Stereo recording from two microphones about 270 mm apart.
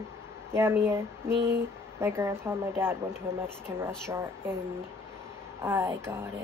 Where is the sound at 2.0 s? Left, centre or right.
Centre.